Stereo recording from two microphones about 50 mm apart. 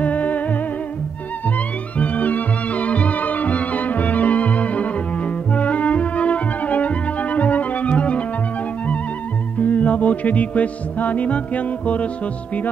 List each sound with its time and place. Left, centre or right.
0.0 s music: left
2.0 s music: left
9.6 s music: left